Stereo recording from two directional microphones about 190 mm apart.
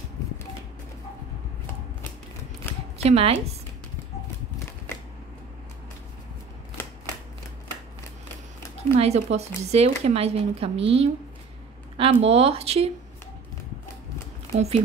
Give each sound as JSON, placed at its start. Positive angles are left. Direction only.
{"t": 2.6, "sound": "zipper", "side_deg": 10}
{"t": 3.0, "sound": "a woman's voice", "side_deg": -30}
{"t": 8.9, "sound": "speech", "side_deg": -35}
{"t": 14.5, "sound": "speech", "side_deg": -35}